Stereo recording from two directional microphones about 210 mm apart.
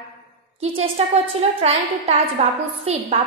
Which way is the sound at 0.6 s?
30° right (ahead or behind).